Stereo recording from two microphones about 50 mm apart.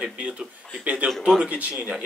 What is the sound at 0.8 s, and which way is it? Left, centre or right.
Speech, right.